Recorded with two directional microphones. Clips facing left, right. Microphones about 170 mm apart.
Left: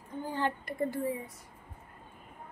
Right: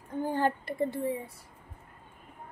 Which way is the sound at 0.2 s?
50° right (ahead or behind).